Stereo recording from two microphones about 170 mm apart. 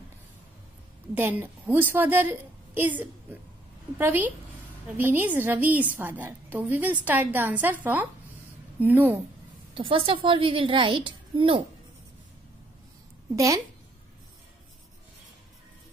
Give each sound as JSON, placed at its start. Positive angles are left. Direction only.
{"t": 1.1, "sound": "a woman's voice", "side_deg": -10}
{"t": 9.8, "sound": "a woman's voice", "side_deg": -30}